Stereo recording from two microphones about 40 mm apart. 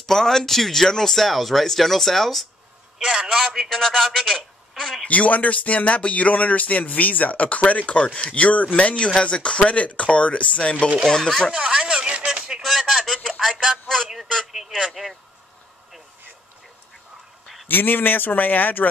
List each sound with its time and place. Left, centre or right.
0.0 s speech: centre
3.0 s a man's voice: centre
3.3 s speech: centre
3.6 s a woman's voice: centre
5.0 s speech: left
11.1 s speech: centre
11.6 s speech: right
12.6 s a sound: centre
14.0 s speech: centre
17.6 s speech: left